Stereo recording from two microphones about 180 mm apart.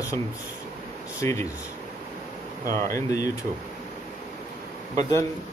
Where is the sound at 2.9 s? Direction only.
20° left (ahead or behind).